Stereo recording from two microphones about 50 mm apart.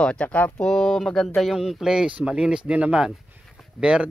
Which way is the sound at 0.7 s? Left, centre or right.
Centre.